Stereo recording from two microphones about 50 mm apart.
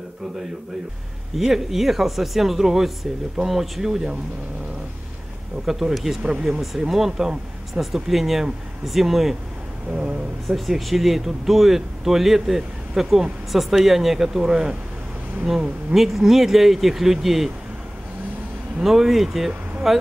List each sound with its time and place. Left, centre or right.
1.3 s speech: centre
5.7 s speech: centre
9.9 s speech: right
10.5 s speech: centre
18.8 s speech: centre